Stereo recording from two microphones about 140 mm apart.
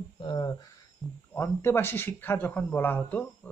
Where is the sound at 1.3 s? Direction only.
15° left (ahead or behind).